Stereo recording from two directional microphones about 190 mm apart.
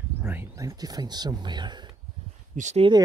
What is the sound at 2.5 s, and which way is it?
Speech, 35° right (ahead or behind).